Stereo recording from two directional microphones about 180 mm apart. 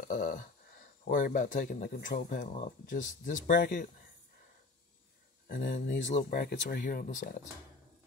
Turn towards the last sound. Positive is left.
turn(degrees=50)  # may be behind; listen again after turning